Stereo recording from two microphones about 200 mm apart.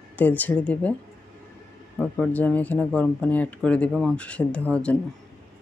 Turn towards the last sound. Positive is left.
turn(degrees=5)  # may be behind; listen again after turning